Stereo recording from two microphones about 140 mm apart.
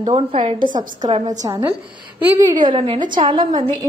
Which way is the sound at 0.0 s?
45° right (ahead or behind).